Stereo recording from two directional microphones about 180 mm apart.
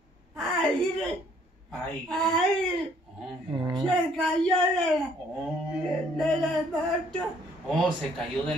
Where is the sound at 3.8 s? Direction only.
5° left (ahead or behind).